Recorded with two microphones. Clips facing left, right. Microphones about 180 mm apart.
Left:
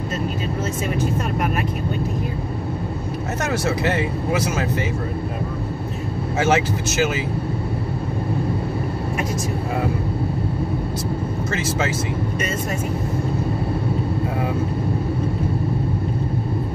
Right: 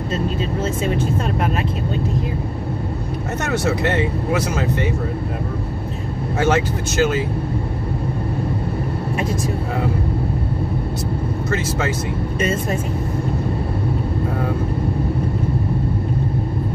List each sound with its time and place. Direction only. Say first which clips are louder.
6.4 s speech: right 1 dB; 5° left (ahead or behind)